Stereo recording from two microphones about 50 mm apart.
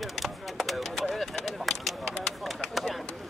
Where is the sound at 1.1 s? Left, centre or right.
Centre.